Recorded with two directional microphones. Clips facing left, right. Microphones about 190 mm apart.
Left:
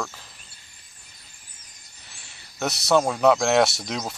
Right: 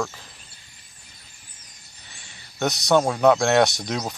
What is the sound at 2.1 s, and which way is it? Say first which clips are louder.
Speech: right 2 dB; centre (ahead or behind).